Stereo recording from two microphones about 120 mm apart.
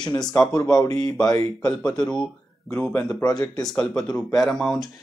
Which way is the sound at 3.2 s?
30° left (ahead or behind).